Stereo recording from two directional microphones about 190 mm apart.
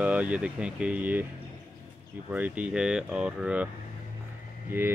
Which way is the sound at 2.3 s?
5° right (ahead or behind).